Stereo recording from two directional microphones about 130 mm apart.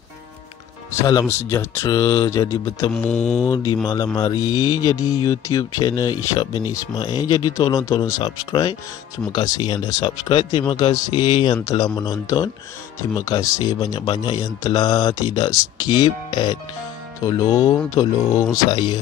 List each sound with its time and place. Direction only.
1.2 s speech: 20° left (ahead or behind)
2.9 s mantra: 10° left (ahead or behind)
3.4 s a man's voice: 25° left (ahead or behind)